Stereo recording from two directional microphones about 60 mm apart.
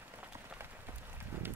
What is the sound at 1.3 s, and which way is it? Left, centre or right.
Horse, right.